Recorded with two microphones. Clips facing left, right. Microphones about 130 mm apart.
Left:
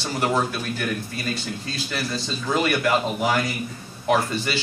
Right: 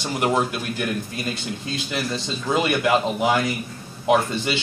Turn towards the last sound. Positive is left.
turn(degrees=-20)  # may be behind; listen again after turning